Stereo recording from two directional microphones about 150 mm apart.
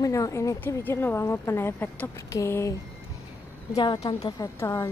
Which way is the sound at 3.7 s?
30° left (ahead or behind).